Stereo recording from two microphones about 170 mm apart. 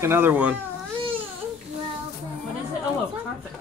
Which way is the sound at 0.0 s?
15° right (ahead or behind).